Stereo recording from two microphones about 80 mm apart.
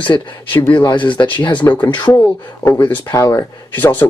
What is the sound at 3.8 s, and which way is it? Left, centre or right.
Speech, left.